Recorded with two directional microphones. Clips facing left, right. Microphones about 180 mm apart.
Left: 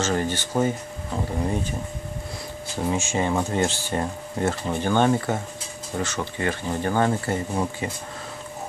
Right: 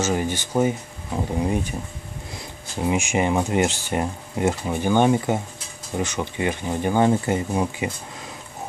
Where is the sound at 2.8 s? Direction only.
15° right (ahead or behind).